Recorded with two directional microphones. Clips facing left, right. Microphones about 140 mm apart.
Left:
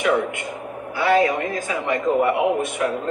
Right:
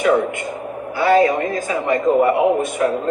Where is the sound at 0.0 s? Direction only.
40° right (ahead or behind).